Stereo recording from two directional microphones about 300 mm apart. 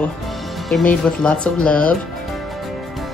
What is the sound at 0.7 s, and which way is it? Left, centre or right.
Speech, centre.